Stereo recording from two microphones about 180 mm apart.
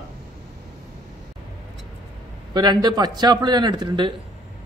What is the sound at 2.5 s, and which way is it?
A man's voice, 25° right (ahead or behind).